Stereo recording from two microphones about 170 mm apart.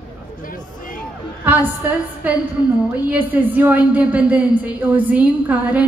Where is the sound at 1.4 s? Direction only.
10° right (ahead or behind).